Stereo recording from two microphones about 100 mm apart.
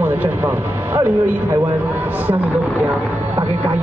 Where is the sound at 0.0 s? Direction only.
20° right (ahead or behind).